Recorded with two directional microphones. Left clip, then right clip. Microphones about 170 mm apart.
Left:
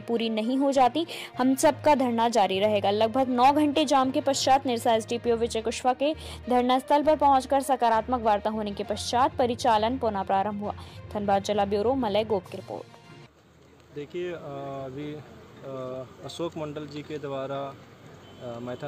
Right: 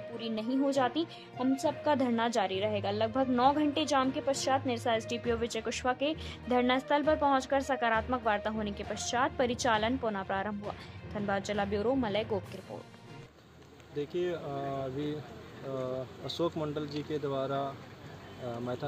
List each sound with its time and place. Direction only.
0.2 s a woman's voice: 40° left (ahead or behind)
1.4 s a woman's voice: 50° left (ahead or behind)
1.8 s a woman's voice: 30° left (ahead or behind)
13.9 s speech: 5° left (ahead or behind)